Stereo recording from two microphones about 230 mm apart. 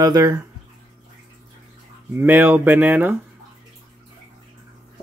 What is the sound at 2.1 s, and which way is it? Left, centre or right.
Speech, centre.